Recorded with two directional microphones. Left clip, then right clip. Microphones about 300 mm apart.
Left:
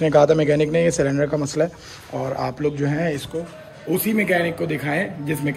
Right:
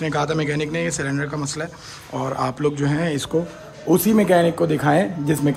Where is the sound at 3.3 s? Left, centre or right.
Right.